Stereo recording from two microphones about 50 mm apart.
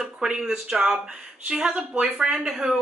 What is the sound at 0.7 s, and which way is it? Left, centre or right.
Speech, centre.